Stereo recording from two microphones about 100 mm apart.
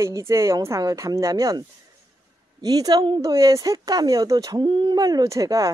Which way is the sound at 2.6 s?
40° right (ahead or behind).